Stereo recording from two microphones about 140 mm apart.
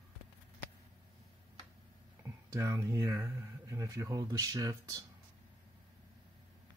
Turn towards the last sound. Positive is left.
turn(degrees=-25)  # may be behind; listen again after turning